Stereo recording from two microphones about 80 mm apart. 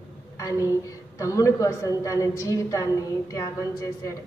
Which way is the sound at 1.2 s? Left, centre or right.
Left.